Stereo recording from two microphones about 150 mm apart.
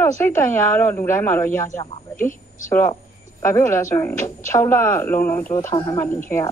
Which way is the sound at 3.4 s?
20° left (ahead or behind).